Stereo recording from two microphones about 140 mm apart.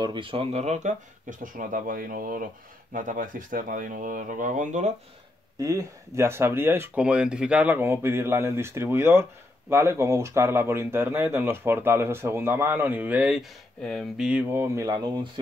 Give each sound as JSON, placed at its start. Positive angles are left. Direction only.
{"t": 0.0, "sound": "speech", "side_deg": -35}
{"t": 2.9, "sound": "speech", "side_deg": -70}
{"t": 5.6, "sound": "speech", "side_deg": -25}
{"t": 14.5, "sound": "speech", "side_deg": -20}
{"t": 14.9, "sound": "speech", "side_deg": -30}